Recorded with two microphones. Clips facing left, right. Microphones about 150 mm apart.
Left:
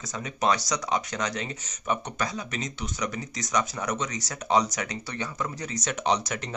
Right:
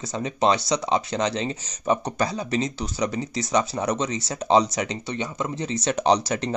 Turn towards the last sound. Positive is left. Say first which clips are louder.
# right 6 dB
turn(degrees=-30)  # may be behind; listen again after turning